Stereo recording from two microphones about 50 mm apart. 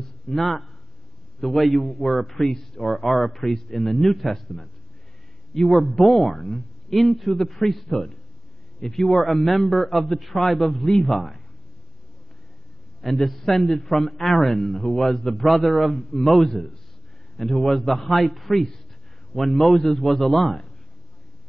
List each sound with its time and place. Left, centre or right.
0.3 s a man's voice: centre
13.0 s a man's voice: centre